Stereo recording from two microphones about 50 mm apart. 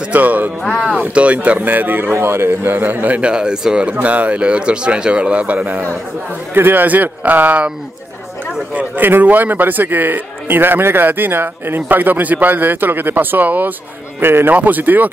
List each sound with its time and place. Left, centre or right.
0.1 s speech: right
1.6 s speech: right
2.1 s speech: right
2.7 s speech: right
3.2 s speech: centre
6.5 s speech: right
8.7 s speech: right
14.2 s speech: right
14.5 s speech: right